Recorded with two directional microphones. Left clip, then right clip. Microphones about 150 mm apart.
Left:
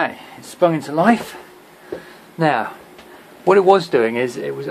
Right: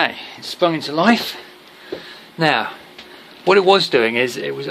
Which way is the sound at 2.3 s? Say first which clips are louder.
Right 1 dB; 10° right (ahead or behind).